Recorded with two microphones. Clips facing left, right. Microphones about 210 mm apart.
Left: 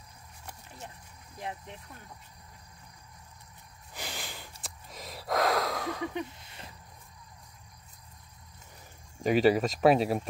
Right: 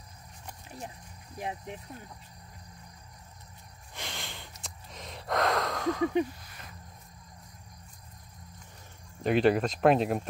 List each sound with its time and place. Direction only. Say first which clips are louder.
1.4 s speech: right 3 dB; 15° right (ahead or behind)
3.9 s snort: left 1 dB; 5° left (ahead or behind)
4.9 s gasp: left 1 dB; 5° left (ahead or behind)
6.4 s a sound: left 1 dB; 25° left (ahead or behind)
9.2 s speech: left 1 dB; 5° left (ahead or behind)